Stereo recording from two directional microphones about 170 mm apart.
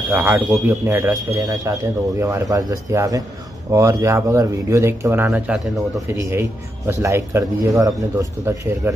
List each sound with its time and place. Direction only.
0.1 s a man's voice: 10° right (ahead or behind)
6.9 s a man's voice: 15° right (ahead or behind)